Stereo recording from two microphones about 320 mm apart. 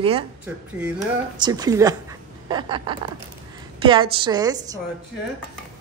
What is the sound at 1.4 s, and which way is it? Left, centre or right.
A woman's voice, centre.